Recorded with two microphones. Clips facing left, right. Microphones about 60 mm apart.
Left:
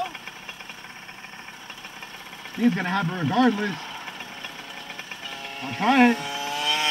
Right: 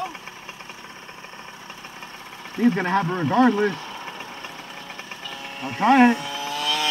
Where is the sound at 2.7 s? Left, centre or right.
Right.